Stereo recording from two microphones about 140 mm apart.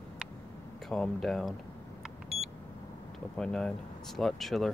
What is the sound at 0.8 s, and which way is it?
Speech, centre (ahead or behind).